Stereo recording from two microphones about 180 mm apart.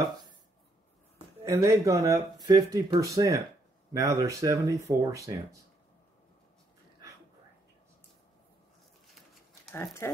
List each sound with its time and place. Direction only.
1.4 s speech: 15° right (ahead or behind)
9.8 s speech: 15° left (ahead or behind)